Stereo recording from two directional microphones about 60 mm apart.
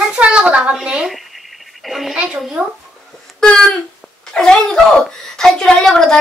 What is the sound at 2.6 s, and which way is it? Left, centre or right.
Speech, right.